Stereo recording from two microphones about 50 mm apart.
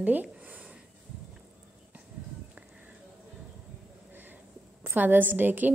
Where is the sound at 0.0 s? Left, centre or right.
Right.